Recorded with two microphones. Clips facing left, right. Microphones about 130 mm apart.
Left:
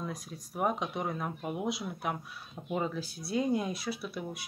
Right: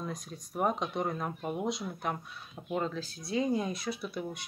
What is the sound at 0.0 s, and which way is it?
Speech, centre (ahead or behind).